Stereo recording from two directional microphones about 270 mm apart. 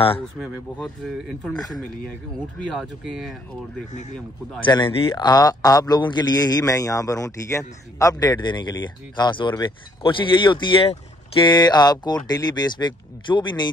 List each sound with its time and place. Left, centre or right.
1.0 s speech: centre
2.7 s speech: centre
4.6 s a man's voice: centre